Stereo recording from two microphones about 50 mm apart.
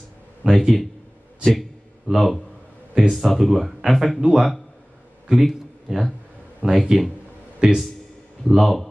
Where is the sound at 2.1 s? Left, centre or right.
Centre.